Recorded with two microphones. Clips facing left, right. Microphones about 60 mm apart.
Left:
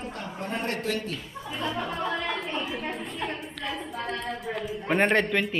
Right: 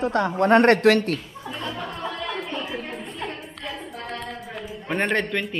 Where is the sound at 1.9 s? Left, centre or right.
Centre.